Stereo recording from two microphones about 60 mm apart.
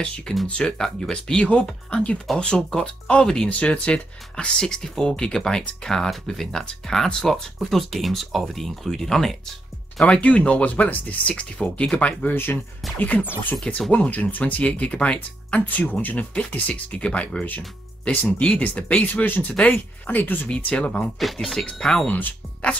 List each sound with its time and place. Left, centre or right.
0.5 s speech: centre
10.0 s speech: centre
20.4 s speech: centre
21.2 s speech: centre
22.1 s speech: left